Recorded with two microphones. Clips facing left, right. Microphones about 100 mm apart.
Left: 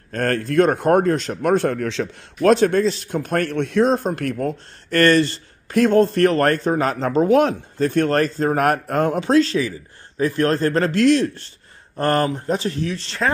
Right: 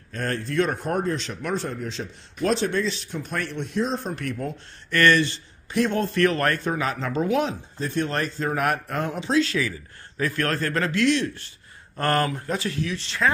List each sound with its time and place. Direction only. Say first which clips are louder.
0.1 s speech: left 7 dB; 55° left (ahead or behind)
1.2 s speech: left 10 dB; 50° left (ahead or behind); by 2.5 s 85° left
2.5 s speech: left 8 dB; 50° left (ahead or behind); by 3.9 s 65° left (ahead or behind)
3.9 s speech: left 8 dB; 50° left (ahead or behind)
9.4 s speech: left 5 dB; 30° left (ahead or behind)
12.0 s speech: left 4 dB; 25° left (ahead or behind)